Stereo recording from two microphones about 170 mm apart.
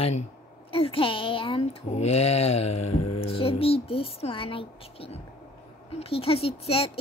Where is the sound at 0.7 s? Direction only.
35° left (ahead or behind).